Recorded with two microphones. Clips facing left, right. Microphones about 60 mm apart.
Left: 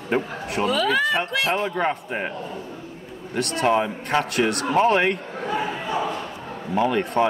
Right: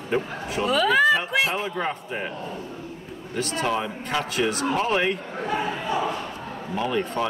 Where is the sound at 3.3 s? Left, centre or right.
Left.